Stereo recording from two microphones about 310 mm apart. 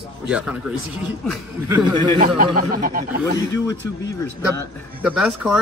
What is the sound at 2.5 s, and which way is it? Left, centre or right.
Speech, right.